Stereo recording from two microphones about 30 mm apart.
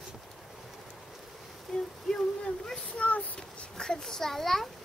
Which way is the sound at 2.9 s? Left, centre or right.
Left.